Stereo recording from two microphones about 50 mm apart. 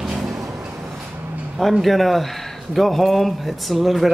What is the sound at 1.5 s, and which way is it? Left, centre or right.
Speech, centre.